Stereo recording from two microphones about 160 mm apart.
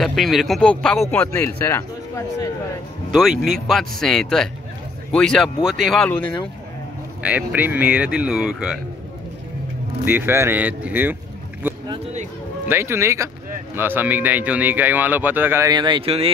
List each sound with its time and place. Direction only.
0.0 s speech: centre (ahead or behind); by 2.2 s 15° left (ahead or behind)
3.1 s speech: centre (ahead or behind)
7.2 s speech: 10° right (ahead or behind)
10.0 s speech: 10° right (ahead or behind)
12.6 s speech: 15° right (ahead or behind)
15.7 s speech: 30° right (ahead or behind)